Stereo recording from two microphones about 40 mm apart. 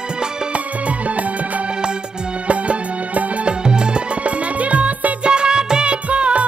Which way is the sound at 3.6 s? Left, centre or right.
Right.